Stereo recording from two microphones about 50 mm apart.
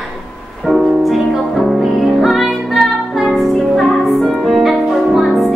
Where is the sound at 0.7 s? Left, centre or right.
Centre.